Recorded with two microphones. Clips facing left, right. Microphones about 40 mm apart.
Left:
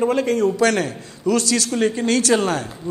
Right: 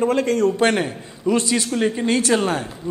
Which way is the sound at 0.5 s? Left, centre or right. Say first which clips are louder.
Even; right.